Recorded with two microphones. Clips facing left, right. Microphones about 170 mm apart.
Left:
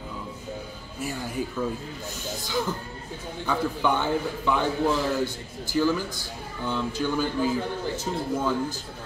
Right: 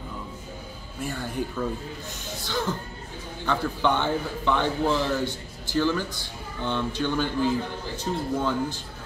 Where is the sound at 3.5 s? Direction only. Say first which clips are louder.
Even; 5° left (ahead or behind).